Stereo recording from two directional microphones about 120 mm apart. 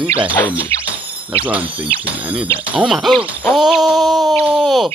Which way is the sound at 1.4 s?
10° right (ahead or behind).